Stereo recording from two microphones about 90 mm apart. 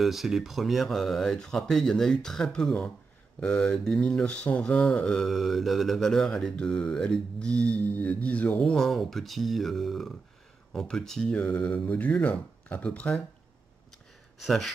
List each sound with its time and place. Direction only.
0.0 s speech: 5° right (ahead or behind); by 13.1 s 15° left (ahead or behind)
14.4 s speech: centre (ahead or behind)